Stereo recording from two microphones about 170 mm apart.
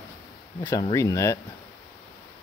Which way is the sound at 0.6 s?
20° left (ahead or behind).